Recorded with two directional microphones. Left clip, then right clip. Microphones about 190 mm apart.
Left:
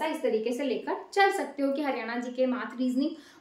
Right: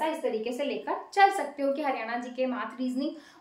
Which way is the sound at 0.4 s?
10° right (ahead or behind).